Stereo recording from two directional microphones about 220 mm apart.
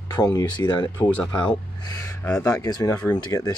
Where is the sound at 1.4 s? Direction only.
20° left (ahead or behind).